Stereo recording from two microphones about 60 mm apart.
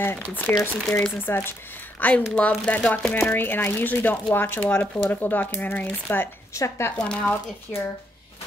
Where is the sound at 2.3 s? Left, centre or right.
Centre.